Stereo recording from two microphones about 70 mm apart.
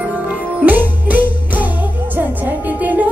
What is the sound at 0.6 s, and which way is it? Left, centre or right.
Music, right.